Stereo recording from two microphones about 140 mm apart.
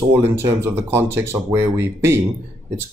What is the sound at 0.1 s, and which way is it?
Speech, 15° right (ahead or behind).